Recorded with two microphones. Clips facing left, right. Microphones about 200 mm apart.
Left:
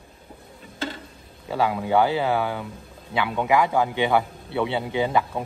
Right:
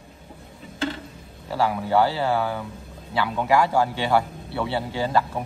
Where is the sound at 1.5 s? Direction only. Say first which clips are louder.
Even; 20° left (ahead or behind).